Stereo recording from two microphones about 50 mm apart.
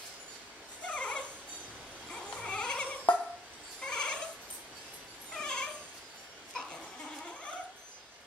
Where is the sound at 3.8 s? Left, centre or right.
Centre.